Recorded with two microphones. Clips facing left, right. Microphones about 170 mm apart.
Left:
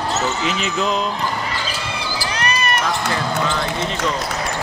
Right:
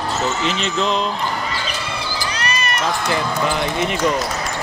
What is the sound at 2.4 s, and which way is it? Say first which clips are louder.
Run: left 4 dB; 55° left (ahead or behind).